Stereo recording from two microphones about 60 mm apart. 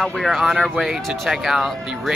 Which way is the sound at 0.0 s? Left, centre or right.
Centre.